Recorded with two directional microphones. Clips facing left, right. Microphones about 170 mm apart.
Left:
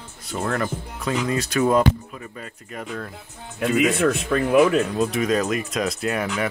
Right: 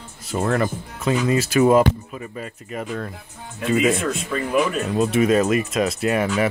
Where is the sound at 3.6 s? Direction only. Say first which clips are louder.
Left 1 dB; 65° left (ahead or behind).